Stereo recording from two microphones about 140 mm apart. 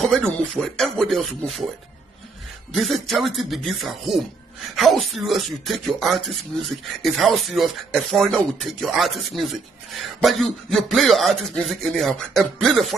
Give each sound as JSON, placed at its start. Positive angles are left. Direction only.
{"t": 0.0, "sound": "speech", "side_deg": 5}
{"t": 2.7, "sound": "speech", "side_deg": 0}